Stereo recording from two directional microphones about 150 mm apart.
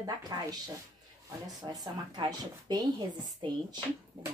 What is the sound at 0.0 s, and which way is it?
Speech, 25° right (ahead or behind).